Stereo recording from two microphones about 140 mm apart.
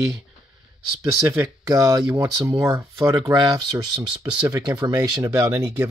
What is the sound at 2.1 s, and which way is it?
Speech, 25° right (ahead or behind).